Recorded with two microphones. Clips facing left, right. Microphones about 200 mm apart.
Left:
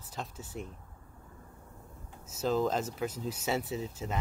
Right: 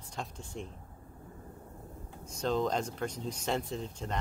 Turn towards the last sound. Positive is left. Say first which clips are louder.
# left 1 dB
turn(degrees=5)  # may be behind; listen again after turning